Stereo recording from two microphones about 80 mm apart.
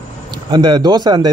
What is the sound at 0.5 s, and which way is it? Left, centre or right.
Speech, right.